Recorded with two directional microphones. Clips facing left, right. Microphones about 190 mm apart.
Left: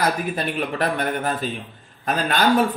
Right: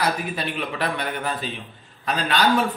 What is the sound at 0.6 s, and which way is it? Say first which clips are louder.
A man's voice: left 4 dB; 45° left (ahead or behind).